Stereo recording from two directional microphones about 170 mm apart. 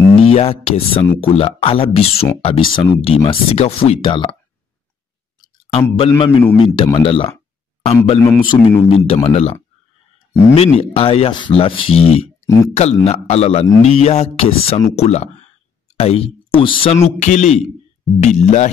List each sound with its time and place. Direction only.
0.3 s speech: 35° left (ahead or behind)
5.4 s a sound: 30° left (ahead or behind)
5.9 s speech: 35° left (ahead or behind)